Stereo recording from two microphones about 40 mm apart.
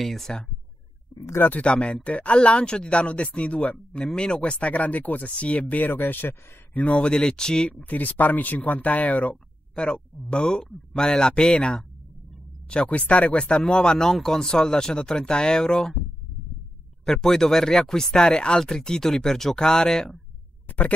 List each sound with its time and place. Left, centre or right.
0.0 s speech: centre
1.6 s speech: left
4.4 s speech: left
5.8 s speech: left
7.0 s speech: left
7.8 s speech: left
9.8 s speech: left
12.6 s speech: left
17.0 s speech: centre
20.6 s a sound: left